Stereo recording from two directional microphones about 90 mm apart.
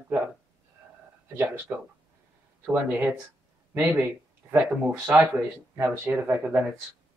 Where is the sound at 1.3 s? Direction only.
25° right (ahead or behind).